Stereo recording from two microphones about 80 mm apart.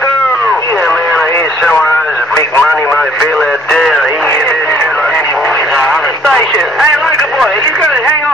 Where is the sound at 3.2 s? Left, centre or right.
Centre.